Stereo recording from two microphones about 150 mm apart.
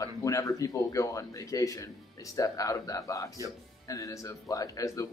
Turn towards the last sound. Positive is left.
turn(degrees=20)  # may be behind; listen again after turning